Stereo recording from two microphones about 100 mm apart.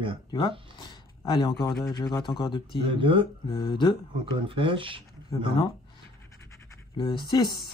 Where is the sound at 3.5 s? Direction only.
50° left (ahead or behind).